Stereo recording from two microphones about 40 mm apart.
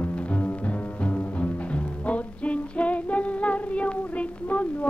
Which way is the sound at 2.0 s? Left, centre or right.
Left.